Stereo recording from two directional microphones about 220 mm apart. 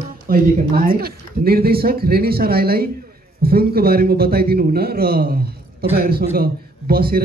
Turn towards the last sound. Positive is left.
turn(degrees=-45)  # may be behind; listen again after turning